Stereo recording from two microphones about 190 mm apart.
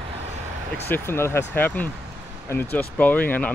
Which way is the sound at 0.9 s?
10° left (ahead or behind).